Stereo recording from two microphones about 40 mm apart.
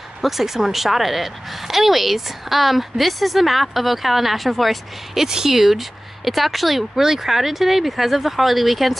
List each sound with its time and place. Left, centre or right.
0.2 s speech: centre